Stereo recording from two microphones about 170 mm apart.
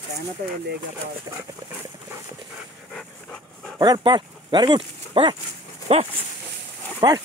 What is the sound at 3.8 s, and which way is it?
Speech, 25° right (ahead or behind).